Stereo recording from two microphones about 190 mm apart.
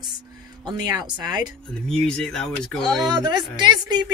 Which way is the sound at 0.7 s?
20° right (ahead or behind).